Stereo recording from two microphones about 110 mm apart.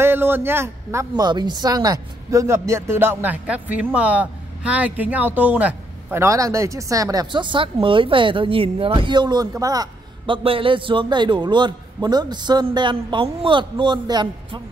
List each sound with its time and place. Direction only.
0.0 s a man's voice: 20° right (ahead or behind)
1.1 s speech: 40° right (ahead or behind); by 6.1 s 15° right (ahead or behind)
6.1 s speech: 30° right (ahead or behind)
7.3 s a man's voice: 50° right (ahead or behind); by 9.8 s 30° right (ahead or behind)
10.2 s a man's voice: 55° right (ahead or behind)